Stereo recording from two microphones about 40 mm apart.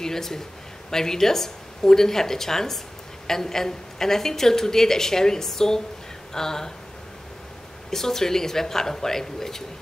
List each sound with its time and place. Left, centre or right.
0.0 s a sound: centre
0.8 s a woman's voice: centre
7.9 s a woman's voice: centre